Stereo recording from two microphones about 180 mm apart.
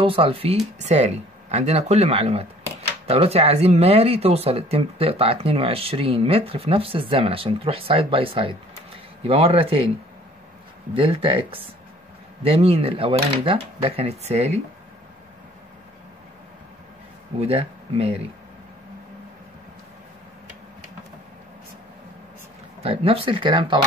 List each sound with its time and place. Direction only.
0.0 s speech: 30° right (ahead or behind)
11.0 s speech: 30° right (ahead or behind)
17.4 s speech: 35° right (ahead or behind)
22.8 s speech: 30° right (ahead or behind)